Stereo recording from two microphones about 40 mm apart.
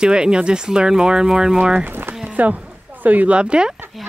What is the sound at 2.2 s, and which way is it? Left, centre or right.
Roaring cats, right.